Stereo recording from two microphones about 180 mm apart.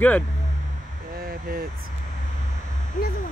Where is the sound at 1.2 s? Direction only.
55° right (ahead or behind).